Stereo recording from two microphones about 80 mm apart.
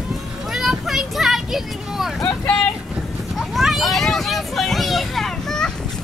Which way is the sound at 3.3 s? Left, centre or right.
Centre.